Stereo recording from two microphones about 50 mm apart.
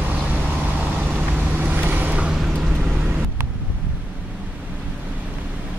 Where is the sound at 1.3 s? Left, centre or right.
Right.